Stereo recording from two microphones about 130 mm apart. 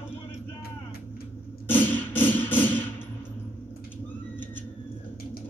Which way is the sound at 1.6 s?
15° left (ahead or behind).